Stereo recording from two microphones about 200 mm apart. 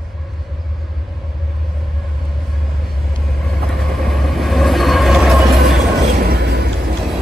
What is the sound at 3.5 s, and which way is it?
Train, centre (ahead or behind).